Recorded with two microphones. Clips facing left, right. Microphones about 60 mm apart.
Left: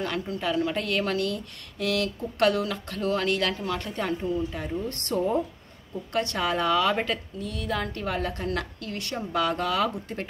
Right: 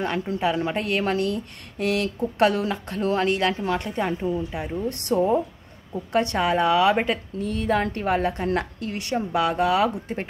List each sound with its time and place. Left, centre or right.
0.0 s a woman's voice: right
6.1 s a woman's voice: right
7.3 s a woman's voice: right